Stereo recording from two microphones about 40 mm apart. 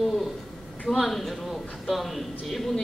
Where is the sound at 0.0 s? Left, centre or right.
Centre.